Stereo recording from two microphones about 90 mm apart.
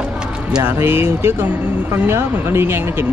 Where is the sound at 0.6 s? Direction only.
25° right (ahead or behind).